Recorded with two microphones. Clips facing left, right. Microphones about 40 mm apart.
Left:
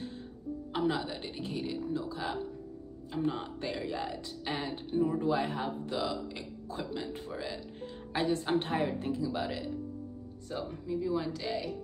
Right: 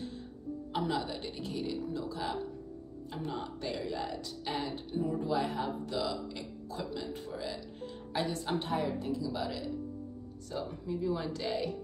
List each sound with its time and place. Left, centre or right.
0.7 s speech: centre
4.9 s a woman's voice: left
5.6 s a woman's voice: centre; by 9.7 s left
10.9 s a woman's voice: centre